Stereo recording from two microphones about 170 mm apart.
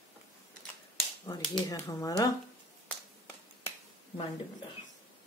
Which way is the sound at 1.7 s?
20° left (ahead or behind).